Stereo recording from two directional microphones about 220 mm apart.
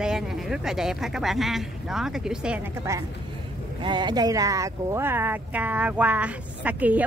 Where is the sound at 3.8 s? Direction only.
20° right (ahead or behind).